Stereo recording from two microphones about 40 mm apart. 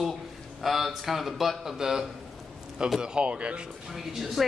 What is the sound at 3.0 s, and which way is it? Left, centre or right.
Speech, right.